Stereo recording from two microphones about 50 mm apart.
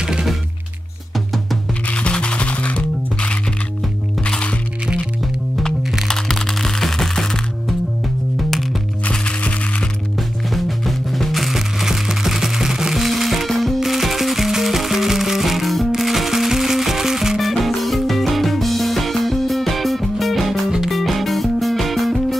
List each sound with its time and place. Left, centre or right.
0.0 s music: centre
1.9 s music: left
6.0 s music: centre
8.4 s music: centre
9.1 s music: left
10.5 s music: centre